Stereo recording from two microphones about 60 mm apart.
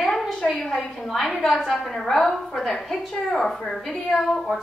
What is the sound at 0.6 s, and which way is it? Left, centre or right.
A woman's voice, centre.